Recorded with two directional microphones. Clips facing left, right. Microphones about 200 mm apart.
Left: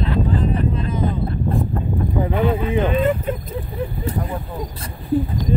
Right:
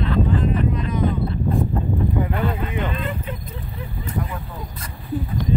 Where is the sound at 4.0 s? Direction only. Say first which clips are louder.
Even; 35° left (ahead or behind).